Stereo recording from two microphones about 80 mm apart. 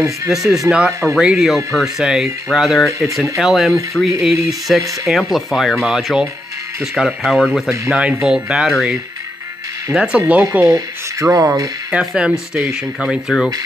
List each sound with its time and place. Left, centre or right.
0.3 s speech: centre
7.9 s speech: centre
10.6 s speech: right
12.0 s speech: centre